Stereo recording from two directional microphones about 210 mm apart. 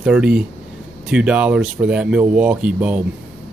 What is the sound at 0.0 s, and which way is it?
Speech, 5° right (ahead or behind).